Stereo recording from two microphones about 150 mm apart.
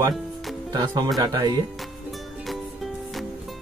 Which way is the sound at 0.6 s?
30° right (ahead or behind).